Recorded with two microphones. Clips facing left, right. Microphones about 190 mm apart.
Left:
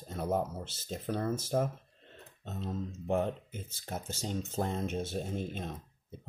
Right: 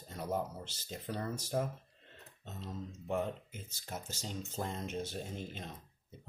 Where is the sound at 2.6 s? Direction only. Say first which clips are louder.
Left 7 dB; 50° left (ahead or behind).